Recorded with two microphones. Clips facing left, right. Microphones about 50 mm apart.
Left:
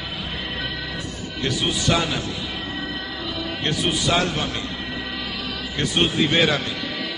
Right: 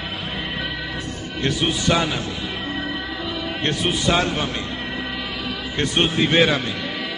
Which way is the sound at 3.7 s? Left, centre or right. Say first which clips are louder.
Right 1 dB; centre.